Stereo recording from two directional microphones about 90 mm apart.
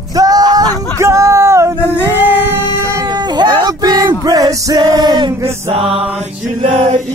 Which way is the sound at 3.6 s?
45° right (ahead or behind).